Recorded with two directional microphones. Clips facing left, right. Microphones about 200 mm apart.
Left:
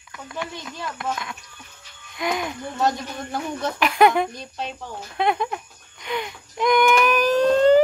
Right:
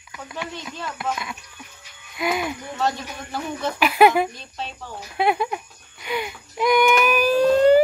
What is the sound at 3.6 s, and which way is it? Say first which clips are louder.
Speech: right 2 dB; 5° right (ahead or behind).